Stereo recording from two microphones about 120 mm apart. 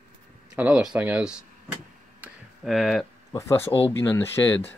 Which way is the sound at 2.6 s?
Centre (ahead or behind).